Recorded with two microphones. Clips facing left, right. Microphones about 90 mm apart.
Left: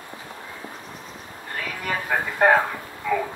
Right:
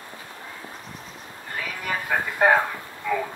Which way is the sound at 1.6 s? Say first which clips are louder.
Left 1 dB; centre (ahead or behind).